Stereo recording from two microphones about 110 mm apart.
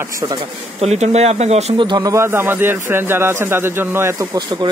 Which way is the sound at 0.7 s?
85° right.